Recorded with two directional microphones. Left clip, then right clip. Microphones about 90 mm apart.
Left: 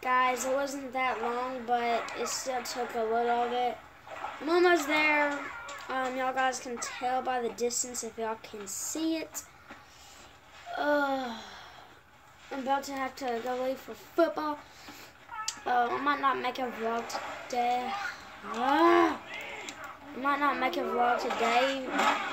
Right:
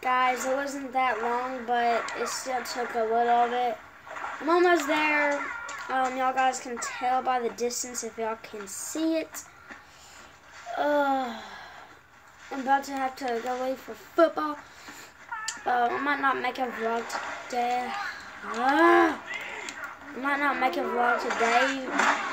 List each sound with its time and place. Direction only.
0.0 s speech: 25° right (ahead or behind)
10.8 s speech: 35° right (ahead or behind)
12.4 s speech: 35° right (ahead or behind)
20.2 s speech: 25° right (ahead or behind)